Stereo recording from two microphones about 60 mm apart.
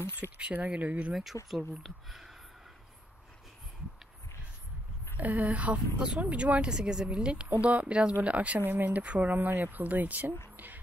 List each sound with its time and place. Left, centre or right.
0.0 s speech: left
0.4 s speech: right
1.3 s speech: right
1.8 s speech: centre
5.1 s speech: right
5.9 s speech: centre
8.5 s speech: right
10.5 s a sound: right